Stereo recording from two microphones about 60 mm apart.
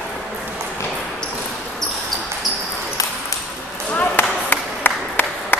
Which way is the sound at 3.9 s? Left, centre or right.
Left.